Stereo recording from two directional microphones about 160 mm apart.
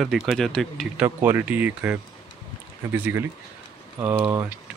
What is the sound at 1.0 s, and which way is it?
Speech, 10° right (ahead or behind).